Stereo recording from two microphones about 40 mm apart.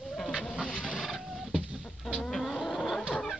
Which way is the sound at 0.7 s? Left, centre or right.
Left.